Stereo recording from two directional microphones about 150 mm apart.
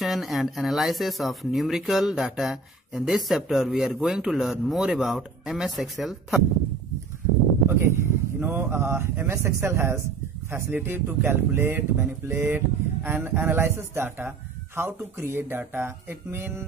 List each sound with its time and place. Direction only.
0.0 s speech: centre (ahead or behind)
7.7 s speech: 15° right (ahead or behind)